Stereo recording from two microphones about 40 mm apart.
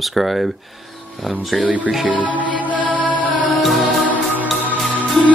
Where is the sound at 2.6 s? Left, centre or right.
Left.